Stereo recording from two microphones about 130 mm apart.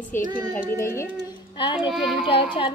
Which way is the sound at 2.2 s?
40° left (ahead or behind).